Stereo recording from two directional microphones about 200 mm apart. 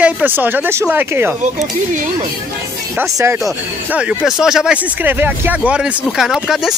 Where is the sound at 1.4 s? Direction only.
40° right (ahead or behind).